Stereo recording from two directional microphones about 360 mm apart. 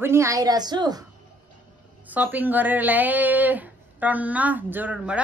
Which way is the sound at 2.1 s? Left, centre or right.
Centre.